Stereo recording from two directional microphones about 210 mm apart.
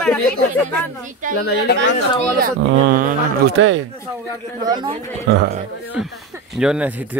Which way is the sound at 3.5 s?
65° right (ahead or behind).